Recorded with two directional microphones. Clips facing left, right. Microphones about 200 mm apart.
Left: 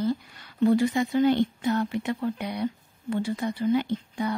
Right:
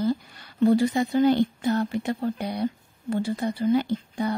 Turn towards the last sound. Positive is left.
turn(degrees=-35)  # may be behind; listen again after turning